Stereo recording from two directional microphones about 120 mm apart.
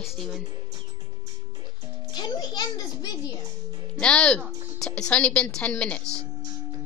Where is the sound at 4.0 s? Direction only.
10° left (ahead or behind).